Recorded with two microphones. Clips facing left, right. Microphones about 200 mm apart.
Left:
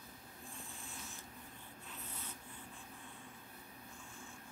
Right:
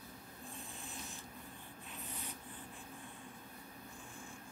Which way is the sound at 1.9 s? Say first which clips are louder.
Right 3 dB; 15° right (ahead or behind).